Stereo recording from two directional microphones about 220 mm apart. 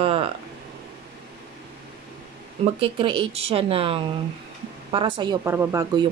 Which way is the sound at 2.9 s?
25° right (ahead or behind).